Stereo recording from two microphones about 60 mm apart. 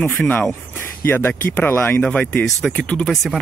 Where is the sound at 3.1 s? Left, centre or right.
Centre.